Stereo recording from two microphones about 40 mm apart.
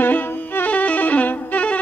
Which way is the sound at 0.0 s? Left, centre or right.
Left.